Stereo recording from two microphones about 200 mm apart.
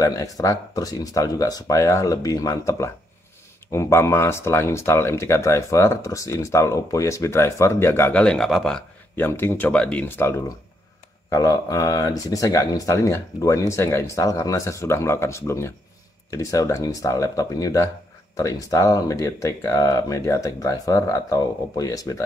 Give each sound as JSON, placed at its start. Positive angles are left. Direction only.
{"t": 0.0, "sound": "speech", "side_deg": 15}